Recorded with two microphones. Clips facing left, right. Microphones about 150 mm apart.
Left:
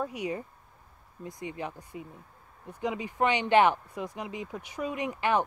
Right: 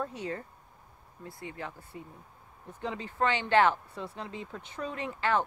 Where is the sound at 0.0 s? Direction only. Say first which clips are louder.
Left 3 dB; 15° left (ahead or behind).